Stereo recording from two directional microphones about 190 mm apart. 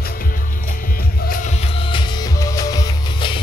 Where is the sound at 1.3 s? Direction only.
35° left (ahead or behind).